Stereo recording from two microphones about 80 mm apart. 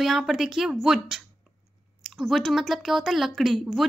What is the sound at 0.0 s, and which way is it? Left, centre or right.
A woman's voice, centre.